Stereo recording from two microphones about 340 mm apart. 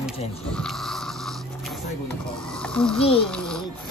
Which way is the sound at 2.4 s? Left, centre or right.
Centre.